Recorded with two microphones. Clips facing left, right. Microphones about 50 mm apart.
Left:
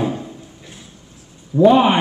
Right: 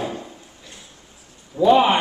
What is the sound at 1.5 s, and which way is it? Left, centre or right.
Speech, centre.